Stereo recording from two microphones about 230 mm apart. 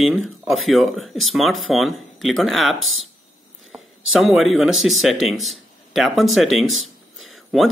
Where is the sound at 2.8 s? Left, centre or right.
Right.